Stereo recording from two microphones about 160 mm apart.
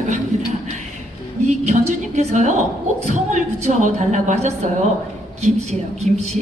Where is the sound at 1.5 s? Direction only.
45° right (ahead or behind).